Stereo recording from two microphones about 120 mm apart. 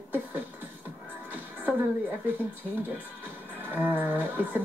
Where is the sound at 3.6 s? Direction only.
15° right (ahead or behind).